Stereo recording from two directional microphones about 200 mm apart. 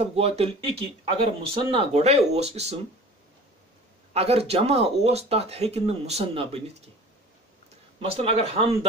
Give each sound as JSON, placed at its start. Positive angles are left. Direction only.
{"t": 0.0, "sound": "speech", "side_deg": -30}
{"t": 4.1, "sound": "speech", "side_deg": -30}
{"t": 8.2, "sound": "speech", "side_deg": -30}